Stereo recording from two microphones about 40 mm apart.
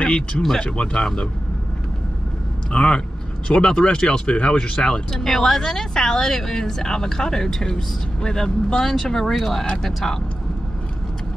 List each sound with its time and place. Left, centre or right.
0.0 s speech: left
2.7 s speech: left
5.1 s speech: centre
8.8 s speech: centre